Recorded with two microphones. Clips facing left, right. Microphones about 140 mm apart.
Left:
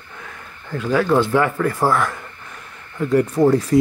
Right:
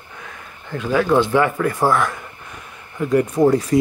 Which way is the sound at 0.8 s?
20° right (ahead or behind).